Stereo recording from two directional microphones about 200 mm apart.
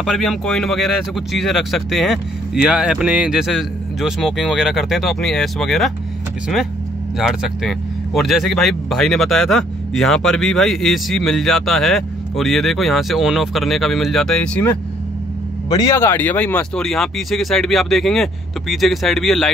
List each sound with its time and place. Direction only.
0.0 s speech: centre (ahead or behind)
7.2 s speech: centre (ahead or behind)
15.7 s speech: 15° left (ahead or behind); by 19.5 s centre (ahead or behind)